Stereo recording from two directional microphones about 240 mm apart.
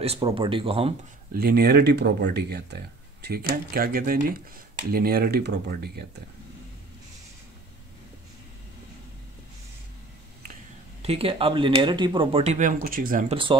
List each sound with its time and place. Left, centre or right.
0.0 s speech: right
1.3 s speech: right
10.5 s speech: right